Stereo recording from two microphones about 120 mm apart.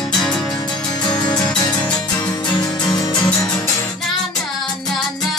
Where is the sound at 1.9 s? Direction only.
10° left (ahead or behind).